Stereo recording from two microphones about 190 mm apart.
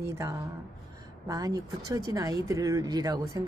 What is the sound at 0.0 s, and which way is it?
Speech, 15° right (ahead or behind).